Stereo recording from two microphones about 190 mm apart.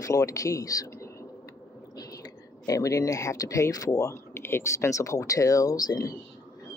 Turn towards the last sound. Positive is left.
turn(degrees=20)  # may be behind; listen again after turning